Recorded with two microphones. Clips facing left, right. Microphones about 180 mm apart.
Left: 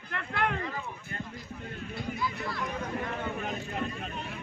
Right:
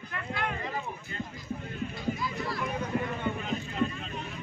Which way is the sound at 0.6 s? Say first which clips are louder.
Right 2 dB; 20° right (ahead or behind).